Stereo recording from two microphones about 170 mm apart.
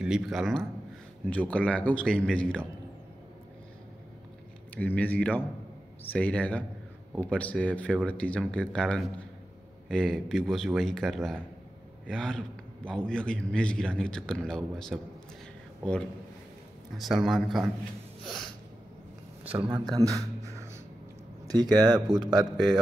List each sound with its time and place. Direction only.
0.0 s a man's voice: centre (ahead or behind)
4.7 s a man's voice: 10° left (ahead or behind)
16.9 s a man's voice: centre (ahead or behind)
18.2 s snort: centre (ahead or behind)
19.4 s speech: 30° right (ahead or behind)
21.7 s speech: 25° right (ahead or behind)